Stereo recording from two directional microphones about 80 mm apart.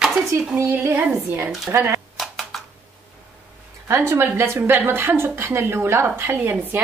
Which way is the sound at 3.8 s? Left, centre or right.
Right.